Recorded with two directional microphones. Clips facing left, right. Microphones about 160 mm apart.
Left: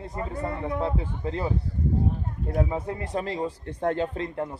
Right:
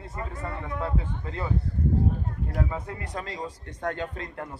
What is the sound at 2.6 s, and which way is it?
Speech, 25° left (ahead or behind).